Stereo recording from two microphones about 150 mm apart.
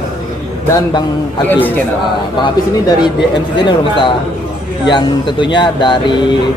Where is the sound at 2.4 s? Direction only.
30° left (ahead or behind).